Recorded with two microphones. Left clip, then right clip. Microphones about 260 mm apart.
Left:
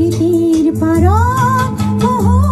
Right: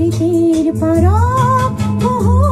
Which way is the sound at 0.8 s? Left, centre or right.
Centre.